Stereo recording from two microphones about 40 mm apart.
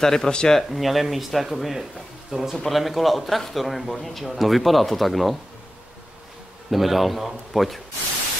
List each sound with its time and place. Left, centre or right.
0.0 s speech: centre
0.7 s a man's voice: centre
2.3 s speech: centre
2.7 s a man's voice: centre
6.7 s a man's voice: centre